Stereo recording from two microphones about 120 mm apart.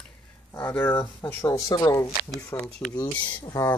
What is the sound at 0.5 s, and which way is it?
Speech, 15° left (ahead or behind).